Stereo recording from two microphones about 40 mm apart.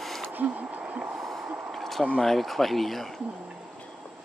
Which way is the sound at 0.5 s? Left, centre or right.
Right.